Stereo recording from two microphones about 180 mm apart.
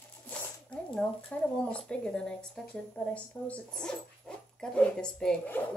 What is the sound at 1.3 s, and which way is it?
A woman's voice, 5° left (ahead or behind).